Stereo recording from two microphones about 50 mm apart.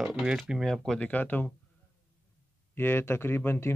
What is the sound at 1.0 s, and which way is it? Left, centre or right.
Speech, left.